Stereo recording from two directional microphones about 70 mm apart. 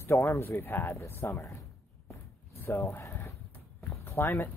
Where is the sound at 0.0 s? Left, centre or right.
Left.